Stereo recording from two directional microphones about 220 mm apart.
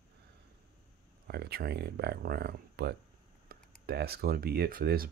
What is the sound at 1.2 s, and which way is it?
Speech, 45° right (ahead or behind).